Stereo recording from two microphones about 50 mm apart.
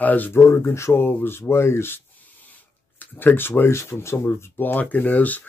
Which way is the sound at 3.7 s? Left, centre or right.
Left.